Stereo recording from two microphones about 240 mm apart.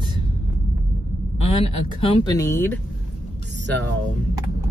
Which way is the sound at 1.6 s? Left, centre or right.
Left.